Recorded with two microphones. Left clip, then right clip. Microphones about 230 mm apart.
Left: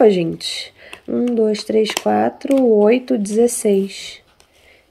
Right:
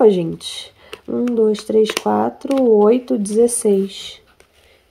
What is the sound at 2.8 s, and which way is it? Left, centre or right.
Speech, right.